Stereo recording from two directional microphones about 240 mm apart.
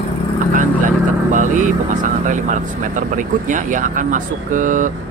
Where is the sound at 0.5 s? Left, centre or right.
Right.